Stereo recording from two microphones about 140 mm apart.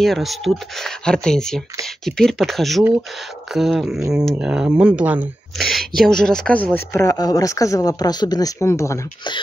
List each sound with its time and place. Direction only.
0.0 s speech: centre (ahead or behind)
5.6 s speech: centre (ahead or behind); by 9.0 s 20° left (ahead or behind)